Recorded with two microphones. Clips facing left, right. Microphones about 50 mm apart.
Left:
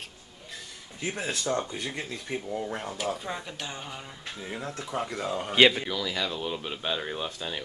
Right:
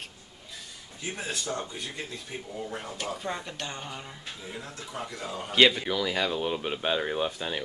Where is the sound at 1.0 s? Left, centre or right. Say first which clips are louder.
Left 3 dB; left.